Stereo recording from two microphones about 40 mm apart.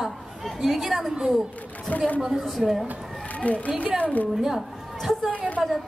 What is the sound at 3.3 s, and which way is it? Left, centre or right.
Speech, left.